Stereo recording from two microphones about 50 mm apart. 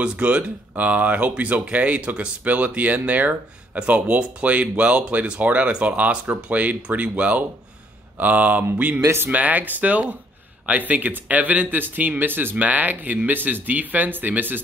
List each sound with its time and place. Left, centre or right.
0.0 s speech: right
9.0 s speech: right
9.3 s speech: right